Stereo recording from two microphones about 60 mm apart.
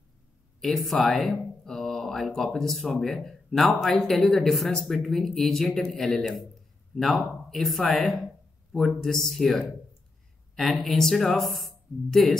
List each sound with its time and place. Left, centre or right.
0.6 s a man's voice: centre